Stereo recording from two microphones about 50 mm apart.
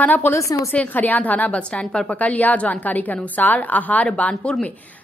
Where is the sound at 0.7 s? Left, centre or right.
Left.